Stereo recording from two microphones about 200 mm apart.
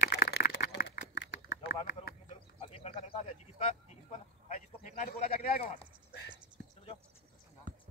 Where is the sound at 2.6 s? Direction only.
30° left (ahead or behind).